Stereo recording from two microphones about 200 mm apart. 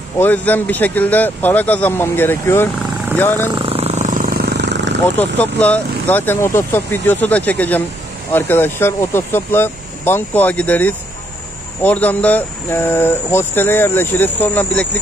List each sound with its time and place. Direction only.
0.2 s speech: 10° left (ahead or behind)
3.5 s vehicle: 30° right (ahead or behind); by 4.9 s 55° right (ahead or behind)
5.4 s speech: 5° left (ahead or behind)